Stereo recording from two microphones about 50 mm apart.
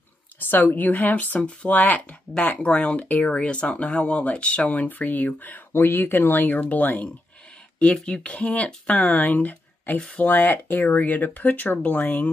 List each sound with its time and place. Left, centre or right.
0.5 s speech: left
2.0 s speech: left
5.7 s speech: left
7.8 s speech: centre; by 12.3 s left